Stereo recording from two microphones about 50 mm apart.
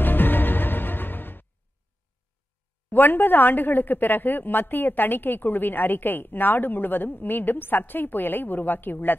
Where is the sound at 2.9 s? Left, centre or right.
Left.